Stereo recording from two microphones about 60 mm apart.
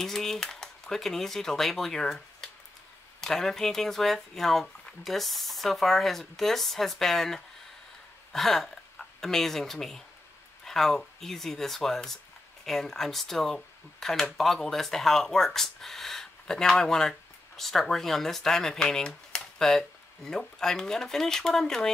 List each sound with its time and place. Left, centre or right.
0.0 s speech: centre